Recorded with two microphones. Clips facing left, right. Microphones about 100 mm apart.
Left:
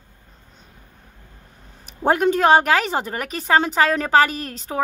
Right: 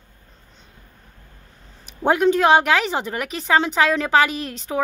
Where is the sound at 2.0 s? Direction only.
40° left (ahead or behind).